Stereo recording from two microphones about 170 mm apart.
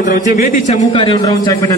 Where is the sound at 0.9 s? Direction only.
30° left (ahead or behind).